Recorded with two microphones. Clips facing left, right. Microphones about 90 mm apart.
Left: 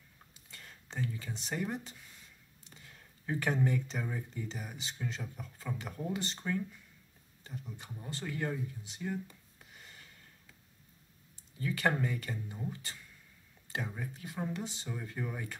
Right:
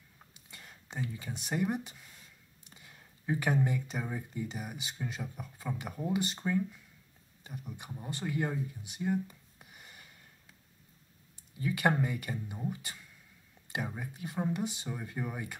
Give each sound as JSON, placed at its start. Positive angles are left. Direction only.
{"t": 0.5, "sound": "speech", "side_deg": -15}
{"t": 11.6, "sound": "speech", "side_deg": -15}